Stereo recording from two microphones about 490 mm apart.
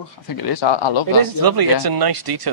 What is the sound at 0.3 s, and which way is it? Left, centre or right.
Speech, left.